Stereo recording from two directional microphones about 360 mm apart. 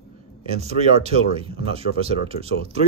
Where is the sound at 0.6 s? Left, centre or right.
Centre.